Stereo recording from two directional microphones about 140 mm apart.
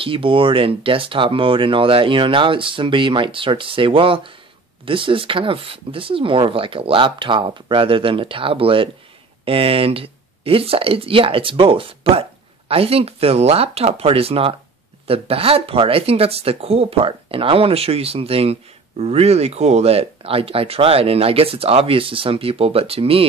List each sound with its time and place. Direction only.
0.0 s speech: 40° right (ahead or behind)